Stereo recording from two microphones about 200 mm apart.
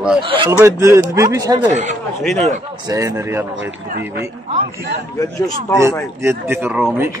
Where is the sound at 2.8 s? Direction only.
15° right (ahead or behind).